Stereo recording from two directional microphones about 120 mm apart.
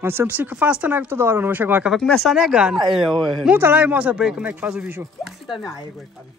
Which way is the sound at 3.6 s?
15° right (ahead or behind).